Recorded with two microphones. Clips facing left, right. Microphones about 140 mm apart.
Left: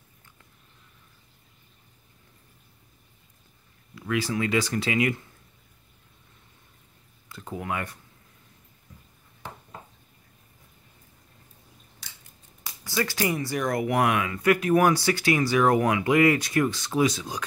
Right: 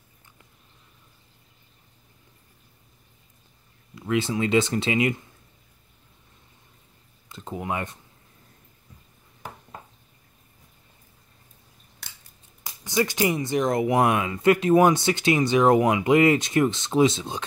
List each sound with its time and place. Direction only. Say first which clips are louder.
3.9 s speech: right 2 dB; 20° right (ahead or behind)
7.2 s a sound: right 2 dB; 20° right (ahead or behind)
12.0 s scissors: right 3 dB; 60° right (ahead or behind)
12.6 s speech: right 4 dB; 20° right (ahead or behind)